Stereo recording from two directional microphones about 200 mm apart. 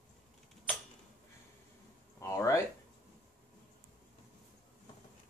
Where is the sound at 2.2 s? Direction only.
15° left (ahead or behind).